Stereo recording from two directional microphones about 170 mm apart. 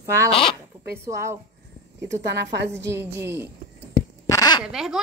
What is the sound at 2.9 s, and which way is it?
Speech, 15° right (ahead or behind).